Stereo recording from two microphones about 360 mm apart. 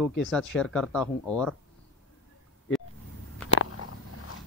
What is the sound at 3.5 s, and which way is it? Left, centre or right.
Biting, left.